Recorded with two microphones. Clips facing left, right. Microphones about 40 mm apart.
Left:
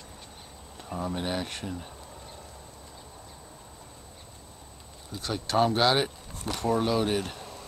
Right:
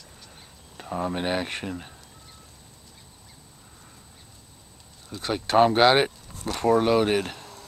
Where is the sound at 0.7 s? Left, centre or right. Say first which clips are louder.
Right 4 dB; right.